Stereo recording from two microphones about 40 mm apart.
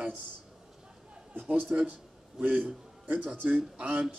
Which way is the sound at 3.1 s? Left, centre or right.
Right.